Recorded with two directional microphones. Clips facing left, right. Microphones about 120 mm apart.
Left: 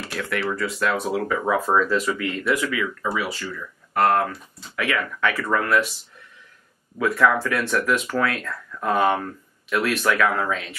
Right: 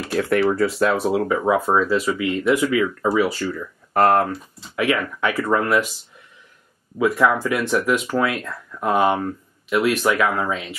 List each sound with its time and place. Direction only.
0.1 s speech: 35° right (ahead or behind)
1.0 s speech: 25° right (ahead or behind)
1.5 s speech: 5° right (ahead or behind)
2.4 s speech: 25° right (ahead or behind)
7.0 s speech: 15° right (ahead or behind)
10.5 s speech: 5° right (ahead or behind)